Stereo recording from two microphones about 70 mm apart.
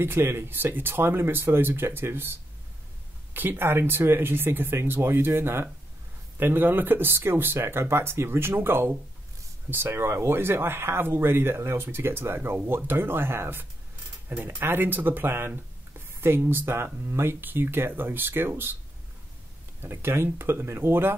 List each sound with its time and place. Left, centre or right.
0.0 s speech: right
3.3 s speech: right
19.8 s speech: right